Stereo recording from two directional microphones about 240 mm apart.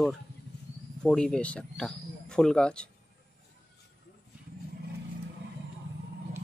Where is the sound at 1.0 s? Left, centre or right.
Centre.